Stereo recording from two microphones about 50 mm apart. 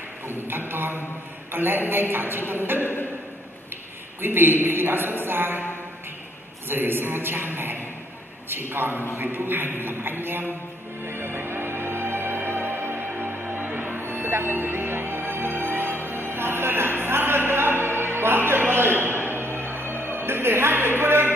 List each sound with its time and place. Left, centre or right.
0.3 s a man's voice: right
2.8 s a man's voice: left
4.2 s a man's voice: right
6.7 s a man's voice: right
11.1 s music: right
18.2 s a sound: right
19.3 s music: right